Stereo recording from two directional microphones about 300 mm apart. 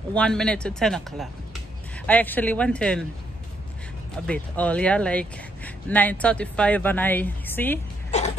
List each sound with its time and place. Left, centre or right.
0.1 s speech: centre
4.3 s speech: centre
8.1 s a sound: left